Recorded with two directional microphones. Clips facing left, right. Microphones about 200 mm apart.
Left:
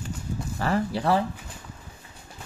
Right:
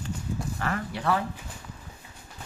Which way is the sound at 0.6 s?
30° left (ahead or behind).